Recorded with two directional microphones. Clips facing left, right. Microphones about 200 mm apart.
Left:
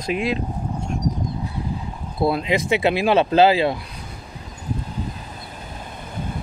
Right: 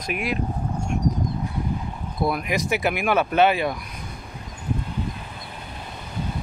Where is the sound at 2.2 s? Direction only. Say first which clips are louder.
Left 4 dB; 25° left (ahead or behind).